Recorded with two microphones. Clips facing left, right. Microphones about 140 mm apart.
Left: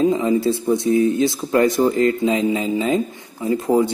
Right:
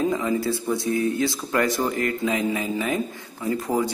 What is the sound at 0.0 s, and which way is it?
Speech, 20° left (ahead or behind).